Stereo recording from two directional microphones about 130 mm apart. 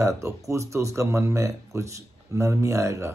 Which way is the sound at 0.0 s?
25° right (ahead or behind).